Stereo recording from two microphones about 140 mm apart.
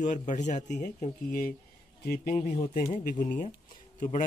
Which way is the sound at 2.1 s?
90° left.